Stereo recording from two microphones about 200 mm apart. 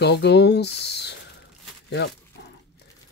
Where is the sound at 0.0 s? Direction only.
60° left (ahead or behind).